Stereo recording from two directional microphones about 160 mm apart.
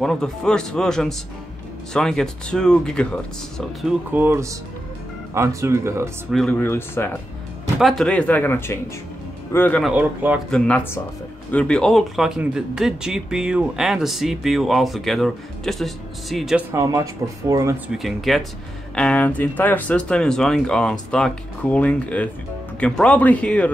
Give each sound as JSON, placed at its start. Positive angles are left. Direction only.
{"t": 0.0, "sound": "speech", "side_deg": 5}
{"t": 4.1, "sound": "speech", "side_deg": -15}
{"t": 6.3, "sound": "speech", "side_deg": 10}
{"t": 7.8, "sound": "speech", "side_deg": 5}
{"t": 9.8, "sound": "speech", "side_deg": -10}
{"t": 10.5, "sound": "speech", "side_deg": 10}
{"t": 16.7, "sound": "speech", "side_deg": -20}
{"t": 17.8, "sound": "speech", "side_deg": 0}